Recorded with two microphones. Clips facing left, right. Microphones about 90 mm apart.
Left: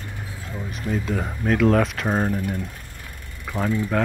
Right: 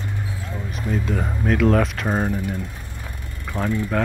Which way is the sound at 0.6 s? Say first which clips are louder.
Right 1 dB; centre (ahead or behind).